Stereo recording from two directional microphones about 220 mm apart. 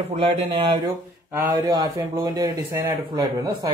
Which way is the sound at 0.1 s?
25° right (ahead or behind).